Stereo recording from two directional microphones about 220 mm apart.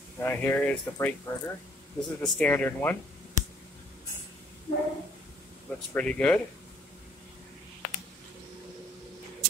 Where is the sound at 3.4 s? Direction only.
35° left (ahead or behind).